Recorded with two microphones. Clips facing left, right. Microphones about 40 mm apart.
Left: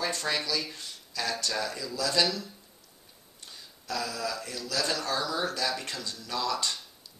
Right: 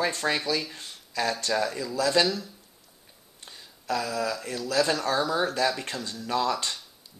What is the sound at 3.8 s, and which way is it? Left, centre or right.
Speech, right.